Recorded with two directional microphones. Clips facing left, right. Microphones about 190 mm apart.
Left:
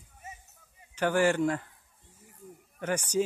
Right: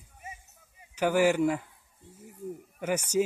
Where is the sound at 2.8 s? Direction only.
10° right (ahead or behind).